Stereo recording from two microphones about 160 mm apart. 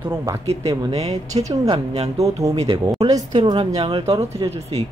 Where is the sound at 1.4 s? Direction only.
20° right (ahead or behind); by 4.9 s 40° right (ahead or behind).